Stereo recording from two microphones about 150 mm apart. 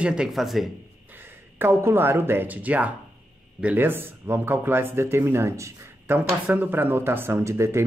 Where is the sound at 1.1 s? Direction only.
15° right (ahead or behind).